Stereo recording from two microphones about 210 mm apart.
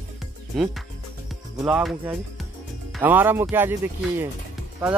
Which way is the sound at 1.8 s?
Centre (ahead or behind).